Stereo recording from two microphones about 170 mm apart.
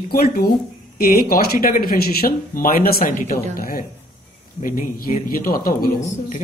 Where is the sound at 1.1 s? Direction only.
60° left (ahead or behind).